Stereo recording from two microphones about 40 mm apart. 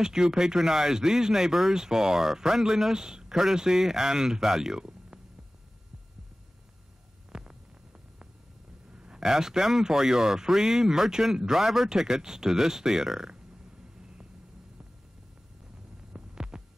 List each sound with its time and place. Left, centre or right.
0.0 s speech: centre
7.3 s hum: centre
8.9 s speech: right
16.3 s heart sounds: right